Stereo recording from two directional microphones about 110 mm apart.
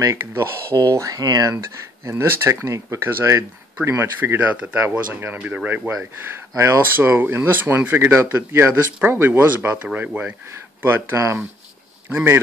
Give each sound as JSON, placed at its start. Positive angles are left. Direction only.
{"t": 0.0, "sound": "speech", "side_deg": -25}